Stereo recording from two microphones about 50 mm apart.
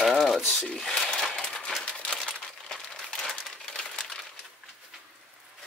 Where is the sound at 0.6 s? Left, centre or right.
Centre.